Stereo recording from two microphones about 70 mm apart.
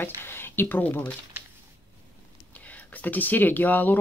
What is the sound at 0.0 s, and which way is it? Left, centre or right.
Speech, left.